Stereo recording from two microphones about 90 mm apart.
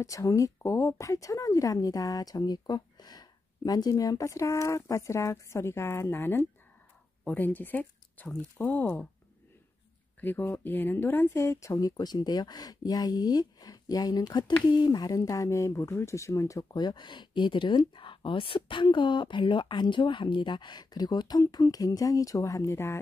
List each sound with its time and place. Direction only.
0.0 s speech: 40° left (ahead or behind); by 9.0 s 20° left (ahead or behind)
10.2 s speech: 20° left (ahead or behind)
16.7 s speech: 55° left (ahead or behind); by 22.9 s 30° left (ahead or behind)